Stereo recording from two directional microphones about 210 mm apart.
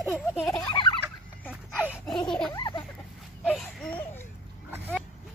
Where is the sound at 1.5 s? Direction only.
5° left (ahead or behind).